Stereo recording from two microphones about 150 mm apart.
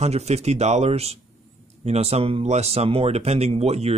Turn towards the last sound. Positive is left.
turn(degrees=-45)  # may be behind; listen again after turning